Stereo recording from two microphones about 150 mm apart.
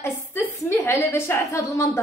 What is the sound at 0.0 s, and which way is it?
A woman's voice, 15° left (ahead or behind).